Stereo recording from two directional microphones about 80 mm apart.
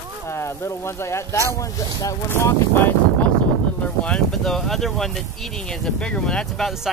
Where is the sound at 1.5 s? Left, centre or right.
Left.